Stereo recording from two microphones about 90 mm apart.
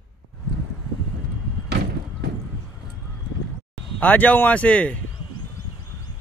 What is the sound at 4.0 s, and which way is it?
Speech, 20° left (ahead or behind).